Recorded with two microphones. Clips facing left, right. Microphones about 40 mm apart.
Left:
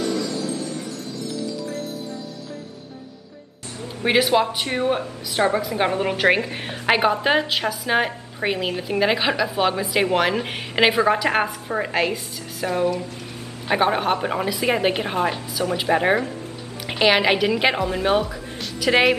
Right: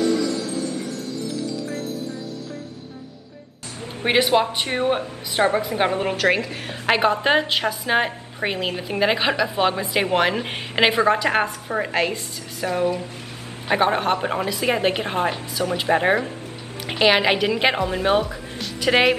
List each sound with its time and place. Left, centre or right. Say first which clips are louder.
4.0 s speech: even; centre
6.1 s a woman's voice: left 1 dB; left
6.7 s a woman's voice: even; centre